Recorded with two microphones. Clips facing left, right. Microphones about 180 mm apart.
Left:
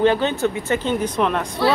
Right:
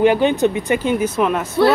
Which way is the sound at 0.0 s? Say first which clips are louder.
Right 4 dB; 15° right (ahead or behind).